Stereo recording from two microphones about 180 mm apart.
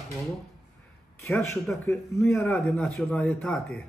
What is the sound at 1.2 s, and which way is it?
A man's voice, 10° left (ahead or behind).